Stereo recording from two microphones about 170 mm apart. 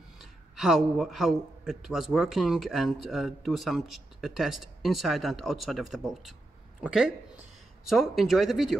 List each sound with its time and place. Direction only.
0.2 s a man's voice: centre (ahead or behind)